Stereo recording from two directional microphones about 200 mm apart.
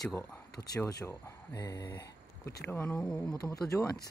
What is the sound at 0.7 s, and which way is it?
Speech, 15° left (ahead or behind).